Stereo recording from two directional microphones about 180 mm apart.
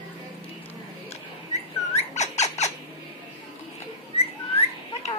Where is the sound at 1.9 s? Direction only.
40° left (ahead or behind).